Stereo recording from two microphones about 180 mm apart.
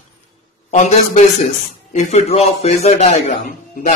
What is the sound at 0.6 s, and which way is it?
Speech, 40° left (ahead or behind).